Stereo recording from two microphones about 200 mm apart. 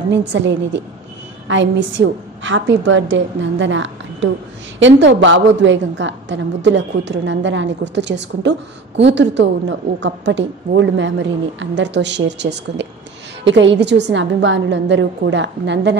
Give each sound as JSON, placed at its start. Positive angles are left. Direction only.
{"t": 0.3, "sound": "a woman's voice", "side_deg": -65}